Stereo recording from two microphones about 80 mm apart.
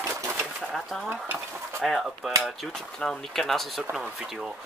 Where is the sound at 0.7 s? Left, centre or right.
Centre.